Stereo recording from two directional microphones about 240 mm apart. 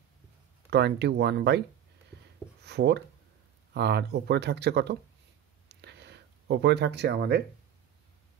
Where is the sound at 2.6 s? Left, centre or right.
Right.